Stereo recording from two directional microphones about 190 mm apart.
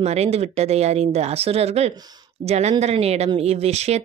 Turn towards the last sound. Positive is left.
turn(degrees=-35)  # may be behind; listen again after turning